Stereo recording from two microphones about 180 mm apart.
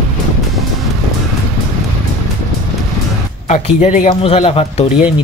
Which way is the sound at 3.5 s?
40° left (ahead or behind).